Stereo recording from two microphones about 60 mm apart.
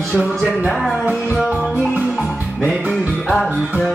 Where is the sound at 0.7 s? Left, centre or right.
Centre.